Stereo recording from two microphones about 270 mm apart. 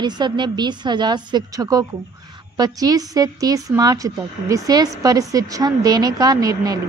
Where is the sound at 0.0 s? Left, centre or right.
Centre.